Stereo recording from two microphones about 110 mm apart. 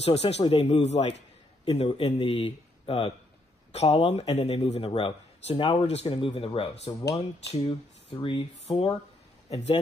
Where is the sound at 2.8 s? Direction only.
50° left (ahead or behind).